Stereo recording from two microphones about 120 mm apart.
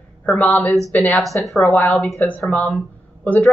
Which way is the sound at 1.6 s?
15° left (ahead or behind).